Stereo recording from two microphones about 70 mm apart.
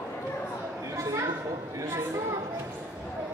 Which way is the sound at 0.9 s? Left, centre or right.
Right.